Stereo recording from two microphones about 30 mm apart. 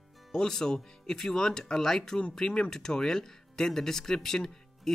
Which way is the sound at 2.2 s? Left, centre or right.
Left.